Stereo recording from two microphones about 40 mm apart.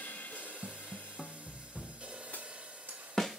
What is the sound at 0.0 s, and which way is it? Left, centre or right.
Music, left.